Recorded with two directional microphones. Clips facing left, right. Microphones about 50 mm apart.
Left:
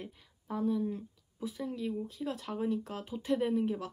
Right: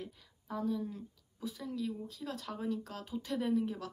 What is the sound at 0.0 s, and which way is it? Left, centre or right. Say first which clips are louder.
A woman's voice: left 1 dB; left.